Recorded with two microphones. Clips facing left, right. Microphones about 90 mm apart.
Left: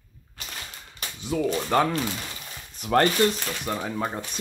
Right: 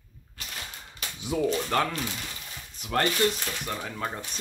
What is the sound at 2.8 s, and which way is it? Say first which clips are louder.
Speech: left 6 dB; 45° left (ahead or behind).